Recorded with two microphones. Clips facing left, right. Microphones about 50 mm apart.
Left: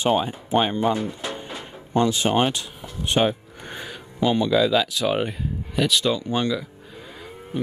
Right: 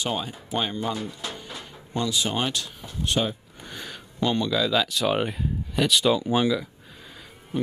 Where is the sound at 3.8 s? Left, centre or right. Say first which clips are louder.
Left 3 dB; centre.